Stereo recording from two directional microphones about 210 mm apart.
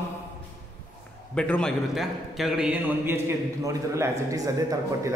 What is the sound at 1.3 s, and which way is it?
A man's voice, 5° left (ahead or behind).